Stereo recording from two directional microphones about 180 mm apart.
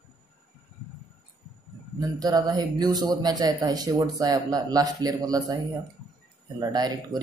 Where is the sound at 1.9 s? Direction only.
20° right (ahead or behind).